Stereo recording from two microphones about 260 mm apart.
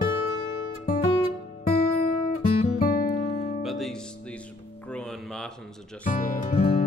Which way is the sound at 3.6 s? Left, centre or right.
Centre.